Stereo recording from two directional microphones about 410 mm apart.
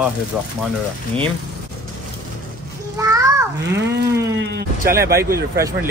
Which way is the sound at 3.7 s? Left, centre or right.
Right.